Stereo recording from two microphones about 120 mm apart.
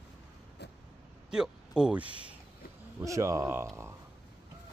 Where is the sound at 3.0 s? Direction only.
25° right (ahead or behind).